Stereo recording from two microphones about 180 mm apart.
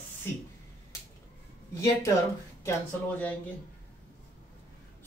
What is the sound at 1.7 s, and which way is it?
Speech, 15° left (ahead or behind).